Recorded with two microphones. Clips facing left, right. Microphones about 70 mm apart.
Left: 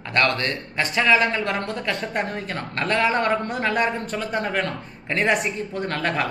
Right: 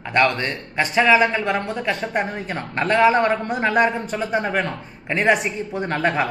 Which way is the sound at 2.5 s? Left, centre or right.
Centre.